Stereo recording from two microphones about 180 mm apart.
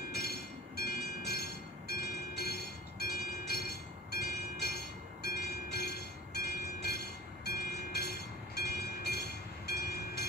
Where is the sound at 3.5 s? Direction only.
60° left (ahead or behind).